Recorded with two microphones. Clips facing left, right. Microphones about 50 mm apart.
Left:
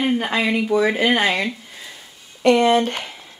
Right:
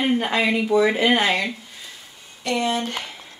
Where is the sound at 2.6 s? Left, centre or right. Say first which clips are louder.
Left 7 dB; left.